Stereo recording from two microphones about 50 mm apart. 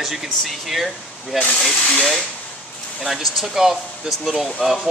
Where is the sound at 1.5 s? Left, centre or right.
Centre.